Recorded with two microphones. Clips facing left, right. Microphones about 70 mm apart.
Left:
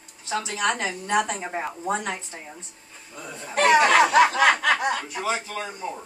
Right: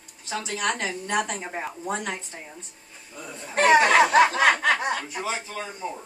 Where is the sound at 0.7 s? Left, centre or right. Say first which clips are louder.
Left 3 dB; centre.